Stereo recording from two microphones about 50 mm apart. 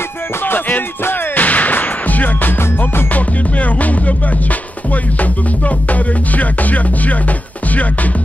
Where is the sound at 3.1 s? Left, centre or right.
Left.